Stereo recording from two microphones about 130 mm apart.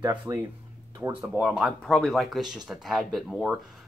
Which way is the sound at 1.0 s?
20° right (ahead or behind).